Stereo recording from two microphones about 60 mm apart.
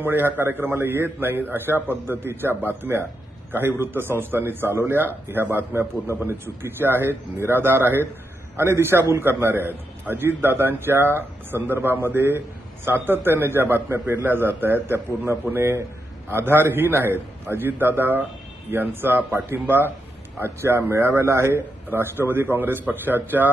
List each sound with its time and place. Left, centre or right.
0.0 s a man's voice: right
5.7 s a man's voice: right